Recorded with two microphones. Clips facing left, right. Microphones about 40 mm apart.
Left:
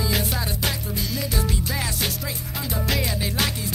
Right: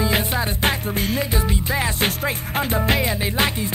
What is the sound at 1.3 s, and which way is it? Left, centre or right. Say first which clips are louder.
Music: right 4 dB; right.